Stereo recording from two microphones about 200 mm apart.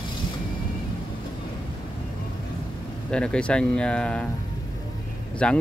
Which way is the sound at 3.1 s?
5° left (ahead or behind).